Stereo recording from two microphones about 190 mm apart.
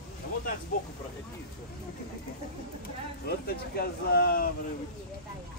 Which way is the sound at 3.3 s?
55° left (ahead or behind).